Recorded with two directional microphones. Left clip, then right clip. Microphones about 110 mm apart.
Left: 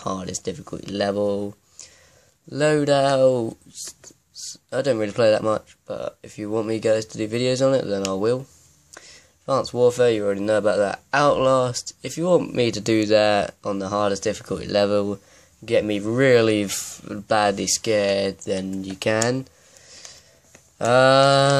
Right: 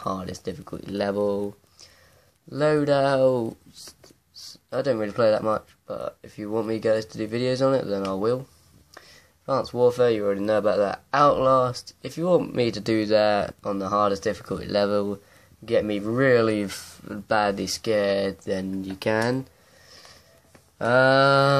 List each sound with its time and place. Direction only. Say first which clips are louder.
0.0 s speech: left 2 dB; 40° left (ahead or behind)
2.5 s speech: left 2 dB; 40° left (ahead or behind)
19.9 s a sound: left 5 dB; 35° left (ahead or behind)
20.7 s speech: left 3 dB; 40° left (ahead or behind)